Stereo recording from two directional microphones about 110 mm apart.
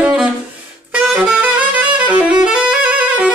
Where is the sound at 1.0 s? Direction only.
10° right (ahead or behind).